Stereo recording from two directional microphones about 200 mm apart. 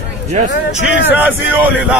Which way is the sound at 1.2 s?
10° right (ahead or behind).